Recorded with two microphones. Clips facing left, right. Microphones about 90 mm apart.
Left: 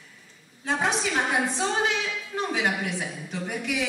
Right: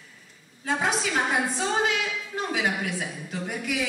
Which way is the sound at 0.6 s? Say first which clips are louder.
Even; 20° left (ahead or behind).